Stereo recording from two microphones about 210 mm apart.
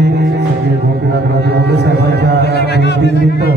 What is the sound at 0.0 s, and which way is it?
Music, 50° right (ahead or behind).